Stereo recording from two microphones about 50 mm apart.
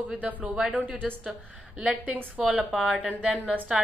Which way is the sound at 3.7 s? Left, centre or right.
Centre.